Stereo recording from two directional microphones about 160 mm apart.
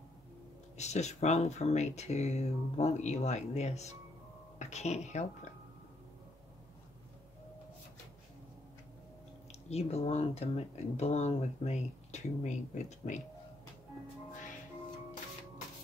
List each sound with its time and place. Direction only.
0.7 s speech: 45° left (ahead or behind)
9.5 s speech: 40° left (ahead or behind)